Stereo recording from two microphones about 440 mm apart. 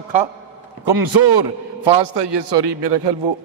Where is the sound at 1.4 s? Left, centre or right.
Right.